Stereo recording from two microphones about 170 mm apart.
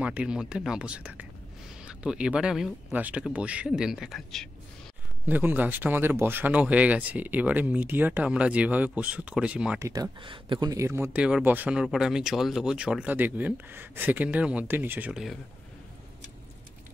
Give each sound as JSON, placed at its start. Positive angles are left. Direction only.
{"t": 0.0, "sound": "speech", "side_deg": -5}
{"t": 5.2, "sound": "speech", "side_deg": -10}
{"t": 9.8, "sound": "speech", "side_deg": -20}
{"t": 10.2, "sound": "speech", "side_deg": -30}